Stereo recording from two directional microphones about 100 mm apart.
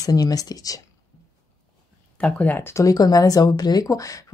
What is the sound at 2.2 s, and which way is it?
Speech, 15° left (ahead or behind).